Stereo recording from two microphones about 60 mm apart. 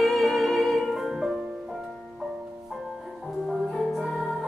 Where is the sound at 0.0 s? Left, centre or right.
Centre.